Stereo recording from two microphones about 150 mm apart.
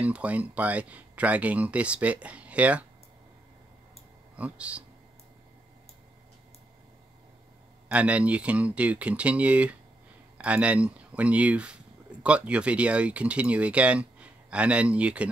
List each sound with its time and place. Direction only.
0.0 s speech: 10° right (ahead or behind)
4.4 s speech: 10° right (ahead or behind)
7.9 s speech: 10° right (ahead or behind)